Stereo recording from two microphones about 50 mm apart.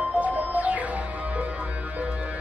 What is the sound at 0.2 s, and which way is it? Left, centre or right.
Music, right.